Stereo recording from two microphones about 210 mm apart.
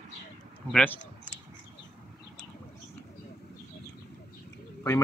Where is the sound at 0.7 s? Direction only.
10° left (ahead or behind).